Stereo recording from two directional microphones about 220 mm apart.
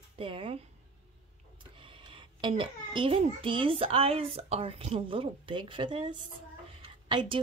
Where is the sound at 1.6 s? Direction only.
25° right (ahead or behind).